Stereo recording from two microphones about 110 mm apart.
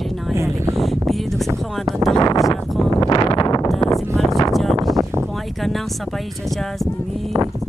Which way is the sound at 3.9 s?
Centre (ahead or behind).